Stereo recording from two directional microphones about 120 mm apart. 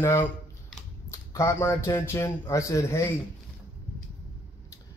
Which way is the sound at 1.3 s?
25° left (ahead or behind).